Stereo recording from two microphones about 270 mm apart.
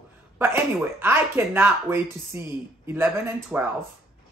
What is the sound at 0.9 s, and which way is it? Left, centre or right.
Speech, centre.